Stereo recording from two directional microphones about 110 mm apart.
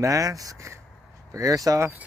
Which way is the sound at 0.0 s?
30° right (ahead or behind).